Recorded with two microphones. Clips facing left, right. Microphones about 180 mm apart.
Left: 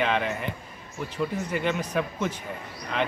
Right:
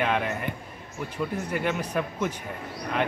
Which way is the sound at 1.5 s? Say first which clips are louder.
Even; 5° right (ahead or behind).